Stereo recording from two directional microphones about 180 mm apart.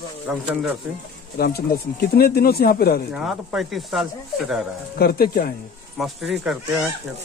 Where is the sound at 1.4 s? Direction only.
60° left (ahead or behind).